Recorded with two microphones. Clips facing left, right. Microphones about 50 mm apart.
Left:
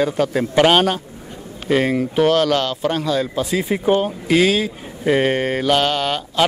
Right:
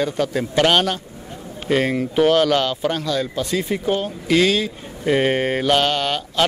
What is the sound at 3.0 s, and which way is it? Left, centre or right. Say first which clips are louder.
Speech: left 2 dB; centre.